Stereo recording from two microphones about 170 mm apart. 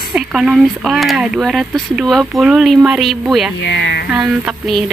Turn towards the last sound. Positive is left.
turn(degrees=0)  # may be behind; listen again after turning